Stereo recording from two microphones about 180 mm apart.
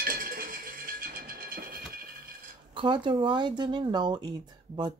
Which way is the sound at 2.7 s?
25° right (ahead or behind).